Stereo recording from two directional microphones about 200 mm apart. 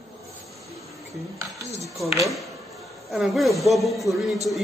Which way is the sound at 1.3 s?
15° right (ahead or behind).